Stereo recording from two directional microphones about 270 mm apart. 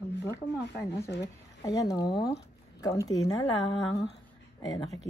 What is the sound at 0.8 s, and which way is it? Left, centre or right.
Speech, left.